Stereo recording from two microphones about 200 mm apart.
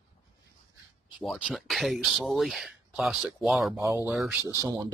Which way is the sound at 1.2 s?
5° right (ahead or behind).